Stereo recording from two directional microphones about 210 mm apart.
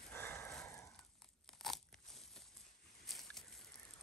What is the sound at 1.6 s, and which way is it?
Crunch, centre (ahead or behind).